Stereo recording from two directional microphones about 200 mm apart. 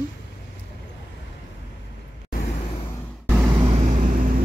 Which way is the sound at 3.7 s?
35° right (ahead or behind).